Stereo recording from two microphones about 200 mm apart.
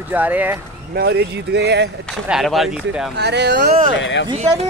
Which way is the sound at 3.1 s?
60° right (ahead or behind).